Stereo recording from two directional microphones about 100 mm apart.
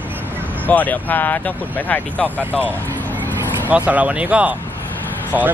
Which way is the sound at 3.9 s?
15° right (ahead or behind).